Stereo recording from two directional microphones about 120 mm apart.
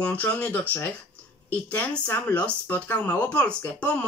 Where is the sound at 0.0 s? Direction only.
15° left (ahead or behind).